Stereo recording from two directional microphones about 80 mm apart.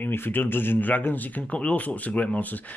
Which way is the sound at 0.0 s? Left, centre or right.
Left.